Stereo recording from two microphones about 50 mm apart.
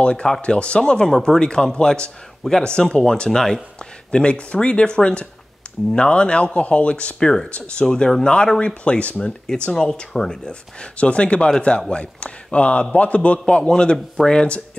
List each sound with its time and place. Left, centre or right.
0.0 s speech: left
9.7 s speech: centre